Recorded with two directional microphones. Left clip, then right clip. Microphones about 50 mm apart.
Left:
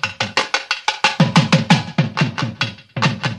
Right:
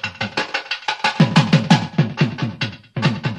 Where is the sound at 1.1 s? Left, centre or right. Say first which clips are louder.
Left 1 dB; right.